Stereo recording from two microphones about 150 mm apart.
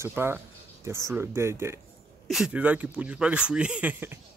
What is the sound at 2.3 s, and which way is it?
Speech, 5° right (ahead or behind).